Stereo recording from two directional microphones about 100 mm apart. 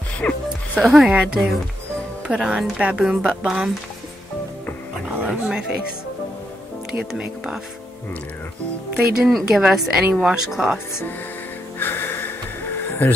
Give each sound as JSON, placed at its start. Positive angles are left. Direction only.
{"t": 0.2, "sound": "speech", "side_deg": 15}
{"t": 0.7, "sound": "a woman's voice", "side_deg": 0}
{"t": 5.2, "sound": "speech", "side_deg": -5}
{"t": 7.1, "sound": "a woman's voice", "side_deg": -5}
{"t": 8.9, "sound": "a woman's voice", "side_deg": -5}
{"t": 11.8, "sound": "music", "side_deg": 20}
{"t": 13.0, "sound": "speech", "side_deg": 20}